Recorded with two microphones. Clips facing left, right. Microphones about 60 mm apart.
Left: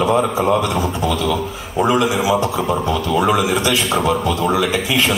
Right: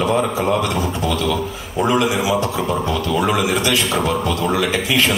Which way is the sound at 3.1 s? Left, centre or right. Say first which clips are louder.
Left 3 dB; centre.